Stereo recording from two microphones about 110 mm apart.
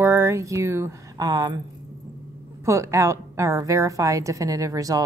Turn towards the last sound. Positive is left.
turn(degrees=-30)  # may be behind; listen again after turning